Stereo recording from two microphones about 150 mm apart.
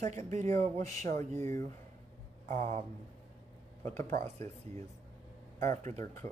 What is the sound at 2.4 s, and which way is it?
Speech, 50° right (ahead or behind).